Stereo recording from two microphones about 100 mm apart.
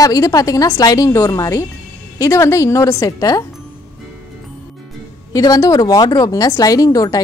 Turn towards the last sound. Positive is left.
turn(degrees=35)  # may be behind; listen again after turning